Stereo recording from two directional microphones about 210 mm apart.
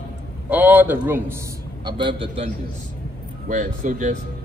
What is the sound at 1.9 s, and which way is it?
Speech, 25° right (ahead or behind).